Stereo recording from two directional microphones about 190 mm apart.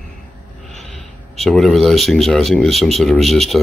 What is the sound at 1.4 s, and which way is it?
Speech, centre (ahead or behind).